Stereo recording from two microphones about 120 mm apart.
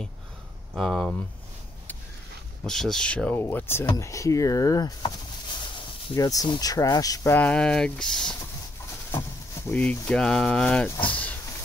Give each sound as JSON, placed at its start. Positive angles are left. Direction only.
{"t": 0.7, "sound": "speech", "side_deg": 5}
{"t": 2.6, "sound": "speech", "side_deg": 5}
{"t": 6.1, "sound": "speech", "side_deg": 30}
{"t": 7.3, "sound": "speech", "side_deg": 10}
{"t": 9.7, "sound": "speech", "side_deg": 10}